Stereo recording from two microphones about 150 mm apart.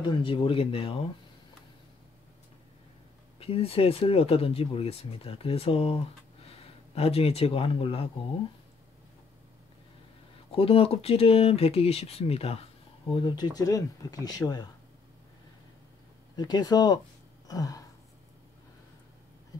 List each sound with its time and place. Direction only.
0.0 s speech: 35° left (ahead or behind)
3.3 s speech: 40° left (ahead or behind)
10.5 s speech: 40° left (ahead or behind)
13.1 s speech: 30° left (ahead or behind)
16.3 s speech: 25° left (ahead or behind)
17.5 s throat clearing: 25° left (ahead or behind)